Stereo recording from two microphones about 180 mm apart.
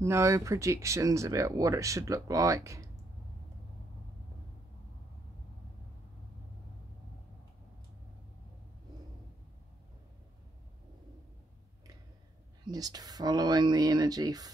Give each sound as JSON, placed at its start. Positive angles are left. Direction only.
{"t": 0.0, "sound": "speech", "side_deg": -15}
{"t": 12.6, "sound": "speech", "side_deg": -20}